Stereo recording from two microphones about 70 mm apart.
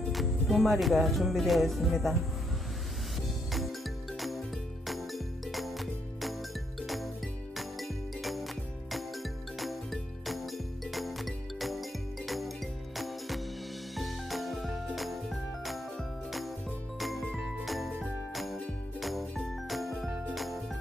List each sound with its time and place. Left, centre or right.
0.1 s speech: centre
4.8 s music: centre
7.5 s music: centre
17.0 s jingle bell: centre
18.3 s music: centre
18.9 s jingle: centre